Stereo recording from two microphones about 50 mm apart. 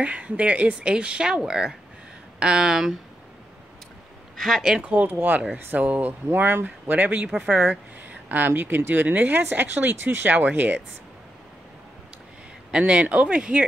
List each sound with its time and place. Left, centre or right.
0.0 s speech: right; by 3.0 s centre
4.4 s speech: centre
4.7 s speech: right
5.0 s speech: right
6.2 s speech: right
8.3 s speech: right
12.7 s speech: right